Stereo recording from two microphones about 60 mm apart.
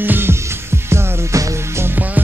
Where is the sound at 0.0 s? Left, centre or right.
Right.